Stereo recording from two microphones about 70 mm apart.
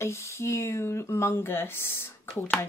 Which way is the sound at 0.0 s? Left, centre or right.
Left.